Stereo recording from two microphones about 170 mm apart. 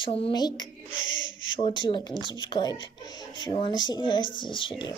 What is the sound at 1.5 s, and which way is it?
Speech, 25° left (ahead or behind).